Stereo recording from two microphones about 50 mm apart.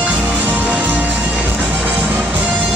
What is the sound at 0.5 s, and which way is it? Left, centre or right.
Music, right.